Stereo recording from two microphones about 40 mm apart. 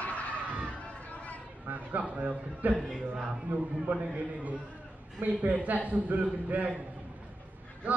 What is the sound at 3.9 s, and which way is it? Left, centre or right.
Speech, right.